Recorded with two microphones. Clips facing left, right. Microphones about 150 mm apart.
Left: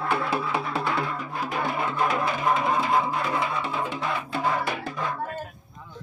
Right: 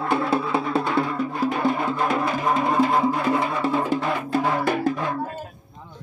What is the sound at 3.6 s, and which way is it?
Music, 40° right (ahead or behind).